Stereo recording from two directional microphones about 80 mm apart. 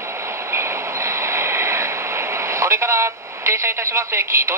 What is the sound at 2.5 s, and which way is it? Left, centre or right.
Speech, right.